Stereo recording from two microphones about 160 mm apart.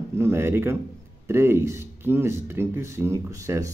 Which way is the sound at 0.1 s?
15° right (ahead or behind).